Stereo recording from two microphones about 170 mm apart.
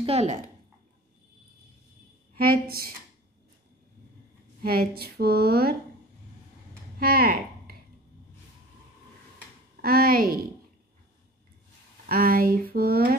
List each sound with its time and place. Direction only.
0.0 s speech: 40° right (ahead or behind)
2.3 s a woman's voice: 60° right (ahead or behind)
4.6 s a woman's voice: 65° right (ahead or behind)
7.0 s speech: 60° right (ahead or behind)
9.8 s a woman's voice: 60° right (ahead or behind)
12.1 s a woman's voice: 60° right (ahead or behind)